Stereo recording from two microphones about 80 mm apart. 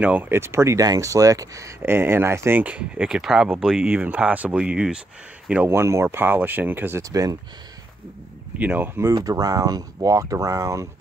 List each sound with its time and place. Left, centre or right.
0.0 s speech: centre
0.3 s speech: right
1.8 s speech: right; by 5.0 s centre
5.7 s speech: right
6.0 s speech: right
7.0 s speech: right
8.5 s speech: right
9.1 s speech: right